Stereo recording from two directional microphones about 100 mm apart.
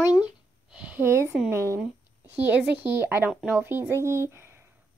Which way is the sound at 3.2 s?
5° right (ahead or behind).